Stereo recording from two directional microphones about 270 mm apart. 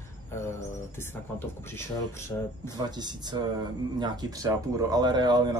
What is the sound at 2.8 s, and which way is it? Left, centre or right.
Speech, centre.